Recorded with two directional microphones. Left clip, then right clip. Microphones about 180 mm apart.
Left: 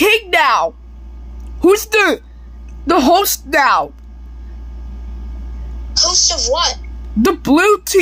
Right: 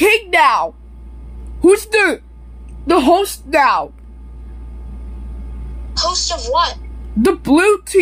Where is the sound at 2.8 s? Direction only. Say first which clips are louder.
Left 1 dB; 30° left (ahead or behind).